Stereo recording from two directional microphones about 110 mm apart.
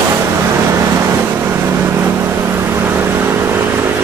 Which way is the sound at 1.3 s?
20° right (ahead or behind).